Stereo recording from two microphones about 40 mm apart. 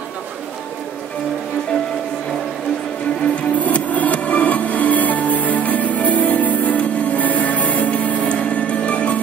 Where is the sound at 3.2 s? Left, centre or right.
Left.